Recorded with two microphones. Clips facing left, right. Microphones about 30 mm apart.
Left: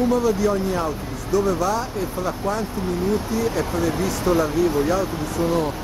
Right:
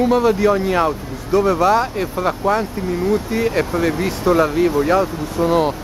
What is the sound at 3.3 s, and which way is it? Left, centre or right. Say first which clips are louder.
Speech: right 4 dB; right.